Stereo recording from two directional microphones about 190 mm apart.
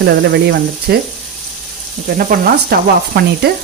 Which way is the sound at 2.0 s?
50° right (ahead or behind).